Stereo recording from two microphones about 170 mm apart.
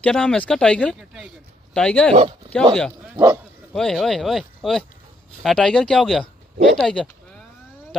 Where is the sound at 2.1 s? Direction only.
35° right (ahead or behind).